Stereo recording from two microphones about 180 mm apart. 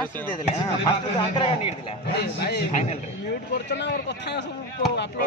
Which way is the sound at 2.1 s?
65° left (ahead or behind).